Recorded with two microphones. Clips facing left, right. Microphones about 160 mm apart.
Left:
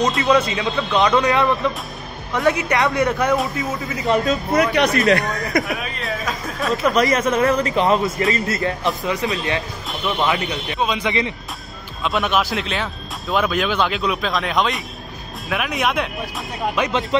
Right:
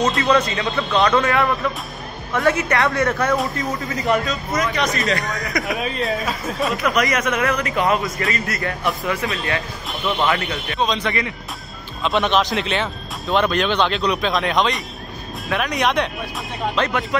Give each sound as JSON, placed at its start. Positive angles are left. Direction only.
{"t": 0.2, "sound": "speech", "side_deg": 15}
{"t": 4.2, "sound": "speech", "side_deg": 55}
{"t": 6.2, "sound": "speech", "side_deg": 0}
{"t": 6.8, "sound": "a man's voice", "side_deg": 30}
{"t": 17.1, "sound": "a man's voice", "side_deg": 25}